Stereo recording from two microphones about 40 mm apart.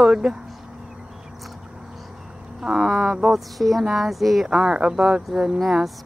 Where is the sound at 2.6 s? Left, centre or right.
Centre.